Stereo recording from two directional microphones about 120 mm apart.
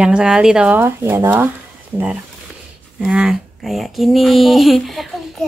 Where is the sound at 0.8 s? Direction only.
20° right (ahead or behind).